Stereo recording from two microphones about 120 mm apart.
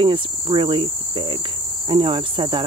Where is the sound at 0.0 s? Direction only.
45° right (ahead or behind).